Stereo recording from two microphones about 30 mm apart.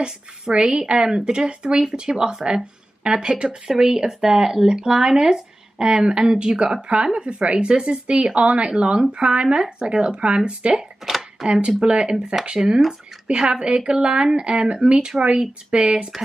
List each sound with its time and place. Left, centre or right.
0.0 s speech: right
11.1 s a sound: centre
11.4 s speech: right